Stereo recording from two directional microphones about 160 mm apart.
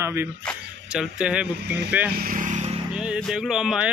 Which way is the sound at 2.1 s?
70° right (ahead or behind).